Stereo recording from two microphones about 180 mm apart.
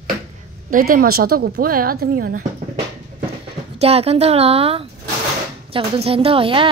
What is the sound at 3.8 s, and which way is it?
Speech, 35° right (ahead or behind).